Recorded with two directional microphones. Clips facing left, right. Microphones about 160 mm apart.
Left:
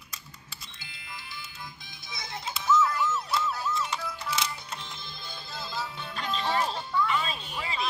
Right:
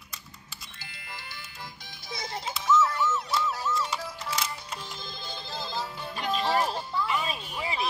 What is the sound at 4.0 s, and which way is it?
Music, 35° right (ahead or behind).